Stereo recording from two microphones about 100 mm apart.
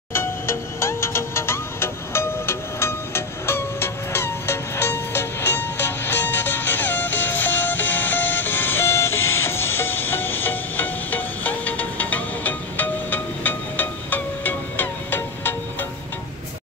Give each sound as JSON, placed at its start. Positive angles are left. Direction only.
{"t": 0.1, "sound": "music", "side_deg": 25}